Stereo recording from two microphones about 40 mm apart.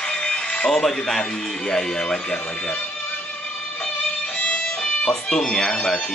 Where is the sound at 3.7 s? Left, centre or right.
Left.